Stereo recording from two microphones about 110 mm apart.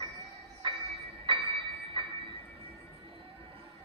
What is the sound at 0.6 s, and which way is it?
Music, 45° right (ahead or behind).